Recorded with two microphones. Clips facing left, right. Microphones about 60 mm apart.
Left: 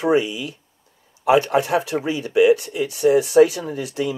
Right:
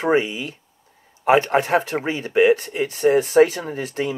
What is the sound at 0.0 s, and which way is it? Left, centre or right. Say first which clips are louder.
Speech: left 1 dB; right.